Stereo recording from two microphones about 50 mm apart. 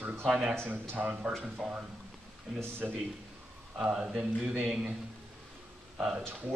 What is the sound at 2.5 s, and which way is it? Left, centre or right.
Speech, right.